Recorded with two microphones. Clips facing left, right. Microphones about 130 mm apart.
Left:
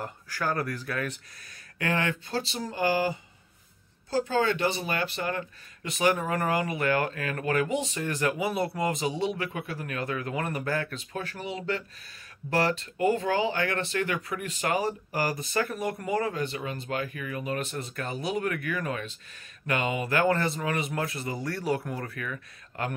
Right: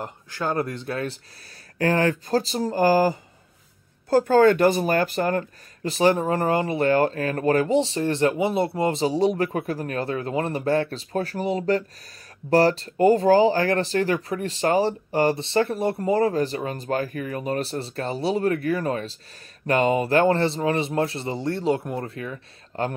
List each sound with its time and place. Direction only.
0.0 s speech: 20° right (ahead or behind); by 3.2 s 40° right (ahead or behind)
4.1 s speech: 50° right (ahead or behind)
5.9 s speech: 30° right (ahead or behind)